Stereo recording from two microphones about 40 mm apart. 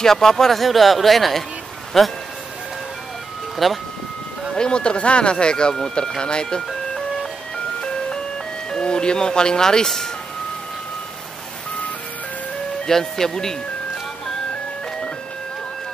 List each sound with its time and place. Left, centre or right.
0.0 s speech: centre
3.5 s speech: centre
4.6 s speech: left
7.5 s music: left
8.6 s speech: left
12.8 s speech: centre